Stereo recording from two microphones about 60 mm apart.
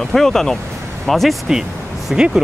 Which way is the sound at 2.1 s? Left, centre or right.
Centre.